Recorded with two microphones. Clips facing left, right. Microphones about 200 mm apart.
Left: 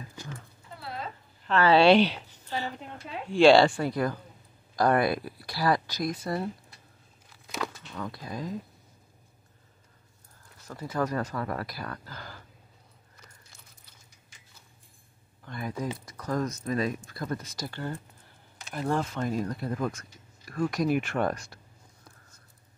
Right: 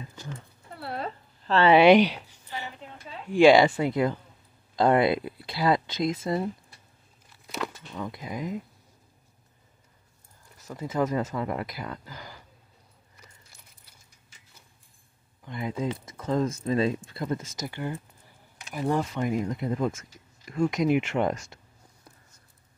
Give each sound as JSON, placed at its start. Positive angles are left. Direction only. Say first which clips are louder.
{"t": 0.7, "sound": "dog", "louder": "right 4 dB", "side_deg": -65}
{"t": 1.5, "sound": "speech", "louder": "right 3 dB", "side_deg": -20}
{"t": 3.3, "sound": "speech", "louder": "right 1 dB", "side_deg": -15}
{"t": 7.9, "sound": "speech", "louder": "right 2 dB", "side_deg": -20}
{"t": 10.7, "sound": "speech", "louder": "right 3 dB", "side_deg": -20}
{"t": 15.4, "sound": "speech", "louder": "right 3 dB", "side_deg": -20}